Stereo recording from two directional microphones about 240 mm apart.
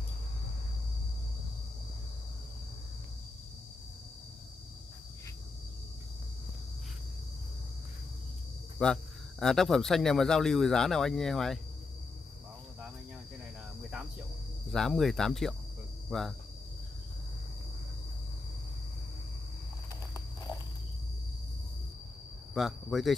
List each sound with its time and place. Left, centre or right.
8.7 s speech: centre
14.7 s speech: centre
22.5 s speech: centre